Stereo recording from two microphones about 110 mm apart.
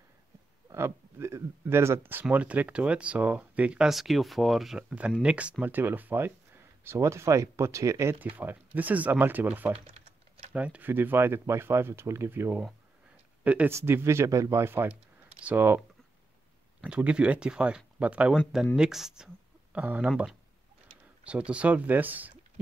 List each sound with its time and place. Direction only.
0.7 s speech: 25° right (ahead or behind)
9.8 s typing: 70° right (ahead or behind)
10.5 s speech: 15° right (ahead or behind)
13.4 s a sound: 15° right (ahead or behind)
13.7 s speech: 20° right (ahead or behind)
16.8 s speech: 10° right (ahead or behind)
21.5 s speech: 10° right (ahead or behind)